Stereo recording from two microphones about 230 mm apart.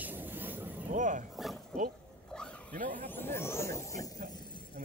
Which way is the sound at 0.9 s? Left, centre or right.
Right.